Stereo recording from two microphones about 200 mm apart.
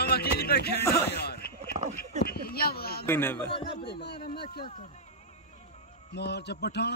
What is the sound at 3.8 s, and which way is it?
Speech, 50° left (ahead or behind).